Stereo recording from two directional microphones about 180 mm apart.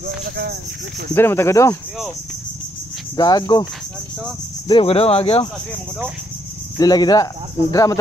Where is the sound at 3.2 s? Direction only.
20° left (ahead or behind).